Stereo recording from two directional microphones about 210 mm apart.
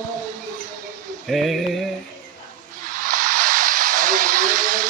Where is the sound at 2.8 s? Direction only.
40° right (ahead or behind).